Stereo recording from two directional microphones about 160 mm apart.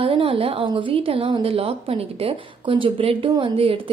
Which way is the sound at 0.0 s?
35° right (ahead or behind).